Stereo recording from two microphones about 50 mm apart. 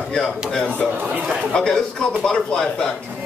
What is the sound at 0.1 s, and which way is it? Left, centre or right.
Speech, centre.